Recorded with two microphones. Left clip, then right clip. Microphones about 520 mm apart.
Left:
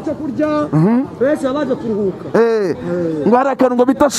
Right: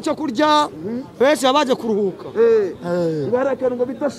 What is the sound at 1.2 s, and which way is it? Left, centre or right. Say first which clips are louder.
Speech: right 3 dB; right.